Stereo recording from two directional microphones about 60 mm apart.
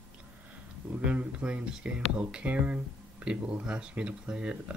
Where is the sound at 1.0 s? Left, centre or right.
Centre.